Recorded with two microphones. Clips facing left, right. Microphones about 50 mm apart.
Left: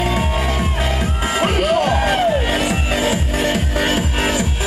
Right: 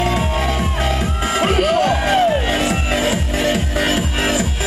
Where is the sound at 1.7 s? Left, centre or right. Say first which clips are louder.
Right 1 dB; centre.